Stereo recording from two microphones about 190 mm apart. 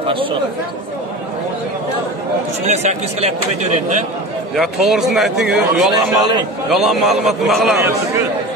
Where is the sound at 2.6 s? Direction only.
35° right (ahead or behind).